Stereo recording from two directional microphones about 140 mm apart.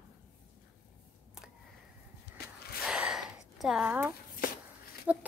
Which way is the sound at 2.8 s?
5° right (ahead or behind).